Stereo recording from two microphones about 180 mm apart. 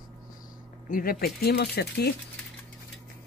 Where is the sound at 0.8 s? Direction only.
50° left (ahead or behind).